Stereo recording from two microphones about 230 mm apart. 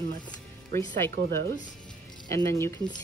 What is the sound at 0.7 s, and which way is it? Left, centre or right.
Speech, right.